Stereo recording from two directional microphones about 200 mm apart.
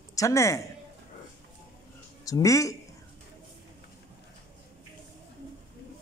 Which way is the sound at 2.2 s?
15° left (ahead or behind).